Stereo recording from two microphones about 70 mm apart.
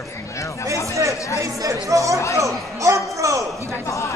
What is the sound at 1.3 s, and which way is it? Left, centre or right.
Speech, right.